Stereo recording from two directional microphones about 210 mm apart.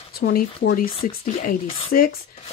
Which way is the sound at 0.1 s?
45° left (ahead or behind).